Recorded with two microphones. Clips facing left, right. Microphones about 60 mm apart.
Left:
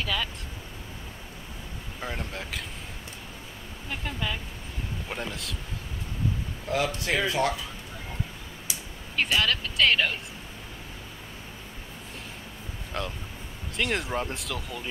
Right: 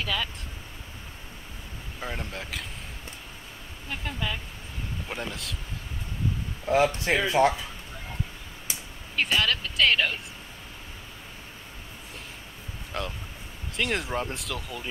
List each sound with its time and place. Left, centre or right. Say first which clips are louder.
0.0 s speech: even; centre
2.0 s speech: even; centre
3.9 s speech: even; centre
6.7 s speech: right 4 dB; right
9.1 s speech: even; centre
12.9 s speech: even; centre